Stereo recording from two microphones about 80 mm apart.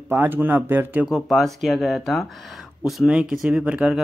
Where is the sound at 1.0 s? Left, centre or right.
Centre.